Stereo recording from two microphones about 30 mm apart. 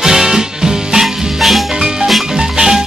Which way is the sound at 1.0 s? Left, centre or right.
Centre.